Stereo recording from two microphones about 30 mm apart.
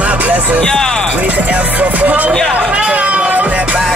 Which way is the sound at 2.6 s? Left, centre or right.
Right.